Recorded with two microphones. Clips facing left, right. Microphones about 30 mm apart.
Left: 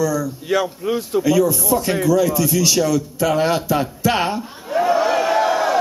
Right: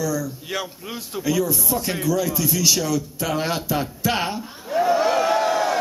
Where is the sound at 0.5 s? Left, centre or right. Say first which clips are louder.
Left 10 dB; left.